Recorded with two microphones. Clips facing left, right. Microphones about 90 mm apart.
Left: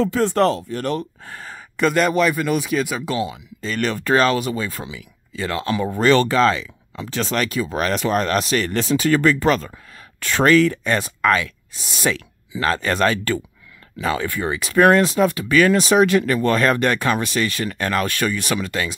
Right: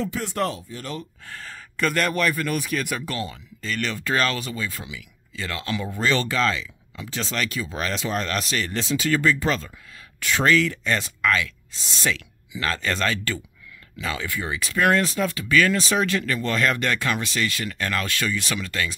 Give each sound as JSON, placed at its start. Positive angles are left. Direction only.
{"t": 0.0, "sound": "speech", "side_deg": 60}
{"t": 1.2, "sound": "speech", "side_deg": 20}
{"t": 3.6, "sound": "speech", "side_deg": 40}
{"t": 4.2, "sound": "speech", "side_deg": 30}
{"t": 5.9, "sound": "speech", "side_deg": 55}
{"t": 6.2, "sound": "speech", "side_deg": 35}
{"t": 7.1, "sound": "speech", "side_deg": 55}
{"t": 7.4, "sound": "speech", "side_deg": 35}
{"t": 7.7, "sound": "speech", "side_deg": 50}
{"t": 8.4, "sound": "speech", "side_deg": 35}
{"t": 8.6, "sound": "speech", "side_deg": 50}
{"t": 10.9, "sound": "speech", "side_deg": 30}
{"t": 16.4, "sound": "speech", "side_deg": 40}
{"t": 16.7, "sound": "speech", "side_deg": 30}